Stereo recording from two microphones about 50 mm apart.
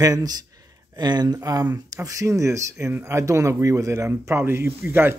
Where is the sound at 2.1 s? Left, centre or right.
Right.